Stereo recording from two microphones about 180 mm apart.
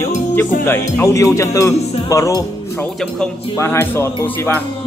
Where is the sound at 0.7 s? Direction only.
15° left (ahead or behind).